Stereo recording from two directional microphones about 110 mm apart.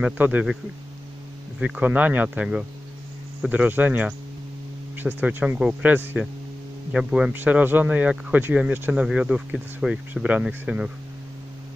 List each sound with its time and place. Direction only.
0.0 s speech: 15° right (ahead or behind)
1.6 s speech: 15° right (ahead or behind)